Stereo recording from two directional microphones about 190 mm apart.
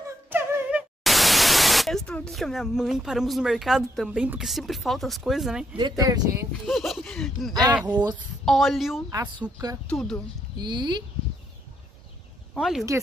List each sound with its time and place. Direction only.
0.3 s speech: 10° right (ahead or behind)
5.8 s a woman's voice: 20° right (ahead or behind)
6.6 s speech: centre (ahead or behind)
9.1 s a woman's voice: 25° right (ahead or behind)
9.8 s speech: 5° left (ahead or behind)
10.6 s a woman's voice: 25° right (ahead or behind)
12.5 s speech: centre (ahead or behind)